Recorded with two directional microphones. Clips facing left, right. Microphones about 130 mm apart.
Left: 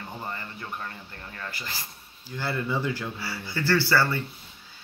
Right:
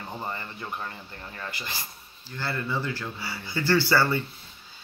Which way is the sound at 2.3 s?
15° left (ahead or behind).